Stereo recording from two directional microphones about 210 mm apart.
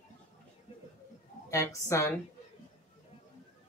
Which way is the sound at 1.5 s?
15° left (ahead or behind).